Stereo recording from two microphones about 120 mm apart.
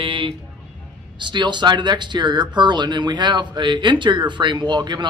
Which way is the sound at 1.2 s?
40° right (ahead or behind).